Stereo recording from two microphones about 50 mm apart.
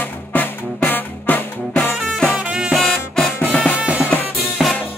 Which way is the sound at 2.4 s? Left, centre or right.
Centre.